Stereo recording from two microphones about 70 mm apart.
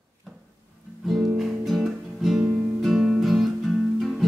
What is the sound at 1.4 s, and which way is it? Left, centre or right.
Guitar, centre.